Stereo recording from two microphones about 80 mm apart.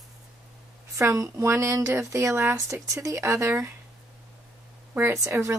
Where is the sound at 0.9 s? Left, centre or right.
Right.